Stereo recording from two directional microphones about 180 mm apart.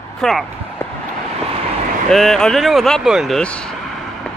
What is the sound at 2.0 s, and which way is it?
Speech, centre (ahead or behind).